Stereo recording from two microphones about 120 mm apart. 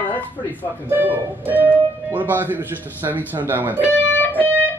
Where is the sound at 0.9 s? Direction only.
15° right (ahead or behind).